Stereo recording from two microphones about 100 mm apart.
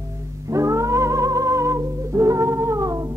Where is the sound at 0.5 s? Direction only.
30° right (ahead or behind).